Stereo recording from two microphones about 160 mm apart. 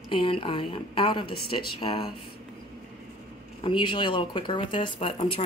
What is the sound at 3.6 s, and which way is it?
Speech, 30° left (ahead or behind).